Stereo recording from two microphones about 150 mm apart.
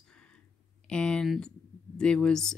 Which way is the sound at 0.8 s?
5° left (ahead or behind).